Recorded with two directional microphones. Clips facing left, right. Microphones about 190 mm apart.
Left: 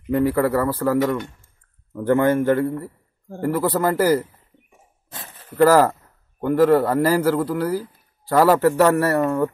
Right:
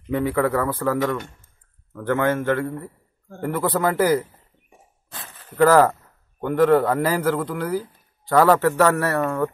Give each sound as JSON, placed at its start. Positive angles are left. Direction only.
{"t": 0.0, "sound": "a man's voice", "side_deg": 5}
{"t": 5.1, "sound": "a sound", "side_deg": 25}
{"t": 5.6, "sound": "a man's voice", "side_deg": 5}